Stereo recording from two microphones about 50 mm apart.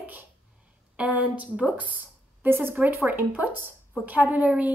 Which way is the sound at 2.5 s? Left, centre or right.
Right.